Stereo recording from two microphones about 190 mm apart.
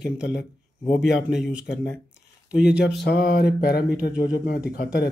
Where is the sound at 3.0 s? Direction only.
55° left (ahead or behind).